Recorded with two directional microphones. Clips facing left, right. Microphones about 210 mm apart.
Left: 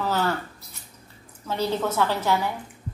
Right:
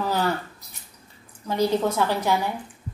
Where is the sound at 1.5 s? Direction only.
15° right (ahead or behind).